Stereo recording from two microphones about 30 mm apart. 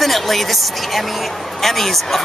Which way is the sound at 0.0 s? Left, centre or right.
Centre.